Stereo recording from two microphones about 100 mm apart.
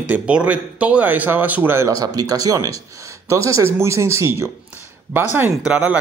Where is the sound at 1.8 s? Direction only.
40° right (ahead or behind); by 5.9 s 10° right (ahead or behind).